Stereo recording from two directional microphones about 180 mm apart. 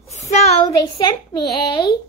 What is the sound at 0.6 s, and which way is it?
Speech, 25° left (ahead or behind).